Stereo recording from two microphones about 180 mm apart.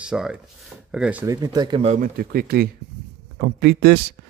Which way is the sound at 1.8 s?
40° right (ahead or behind).